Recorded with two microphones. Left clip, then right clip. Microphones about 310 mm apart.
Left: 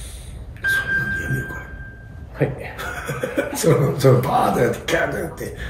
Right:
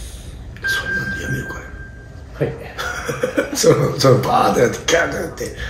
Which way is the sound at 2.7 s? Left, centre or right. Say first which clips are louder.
Right 4 dB; centre.